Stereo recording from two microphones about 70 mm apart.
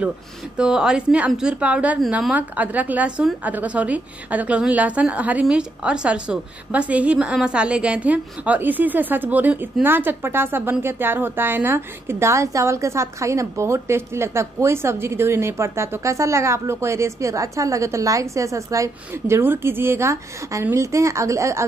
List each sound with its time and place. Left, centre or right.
0.6 s a woman's voice: centre; by 18.9 s right
19.1 s a woman's voice: right